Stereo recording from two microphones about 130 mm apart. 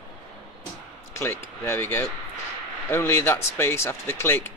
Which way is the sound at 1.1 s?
20° left (ahead or behind).